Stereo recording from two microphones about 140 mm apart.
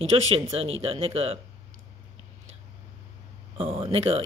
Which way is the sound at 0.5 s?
45° right (ahead or behind).